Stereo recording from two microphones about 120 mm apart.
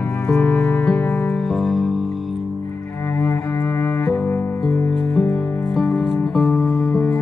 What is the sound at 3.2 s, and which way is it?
Cello, 25° left (ahead or behind).